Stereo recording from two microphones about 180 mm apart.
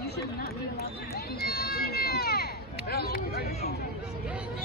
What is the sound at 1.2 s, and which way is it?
Speech, 60° left (ahead or behind).